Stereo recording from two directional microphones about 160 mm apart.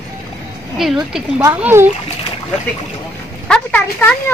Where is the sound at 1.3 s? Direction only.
15° right (ahead or behind).